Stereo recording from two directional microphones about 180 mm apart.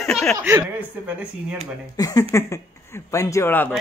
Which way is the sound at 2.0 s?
20° left (ahead or behind).